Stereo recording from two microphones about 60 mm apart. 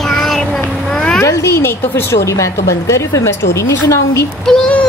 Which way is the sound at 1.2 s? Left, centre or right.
Left.